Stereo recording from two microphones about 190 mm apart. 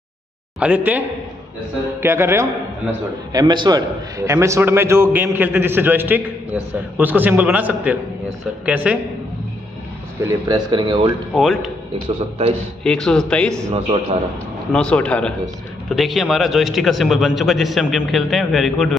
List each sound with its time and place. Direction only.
0.6 s a man's voice: 10° right (ahead or behind)
10.2 s a man's voice: 25° right (ahead or behind)
11.3 s a man's voice: centre (ahead or behind)
12.8 s a man's voice: 5° left (ahead or behind)
14.7 s a man's voice: 5° left (ahead or behind)